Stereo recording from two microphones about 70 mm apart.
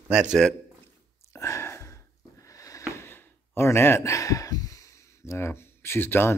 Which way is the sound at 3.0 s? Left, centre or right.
Left.